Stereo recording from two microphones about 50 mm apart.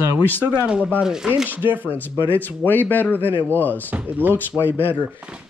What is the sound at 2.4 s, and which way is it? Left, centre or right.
Speech, left.